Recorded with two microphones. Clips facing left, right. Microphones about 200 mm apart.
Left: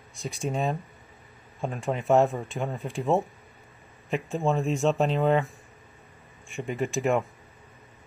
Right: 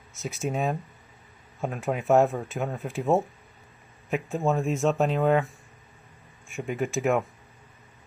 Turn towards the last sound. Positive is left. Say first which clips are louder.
# even
turn(degrees=0)  # may be behind; listen again after turning